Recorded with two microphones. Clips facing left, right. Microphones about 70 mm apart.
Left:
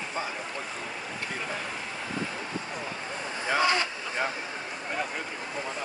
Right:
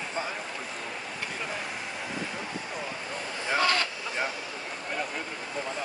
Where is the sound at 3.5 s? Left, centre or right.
Centre.